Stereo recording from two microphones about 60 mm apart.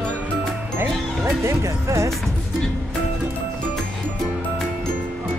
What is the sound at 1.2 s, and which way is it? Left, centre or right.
Speech, right.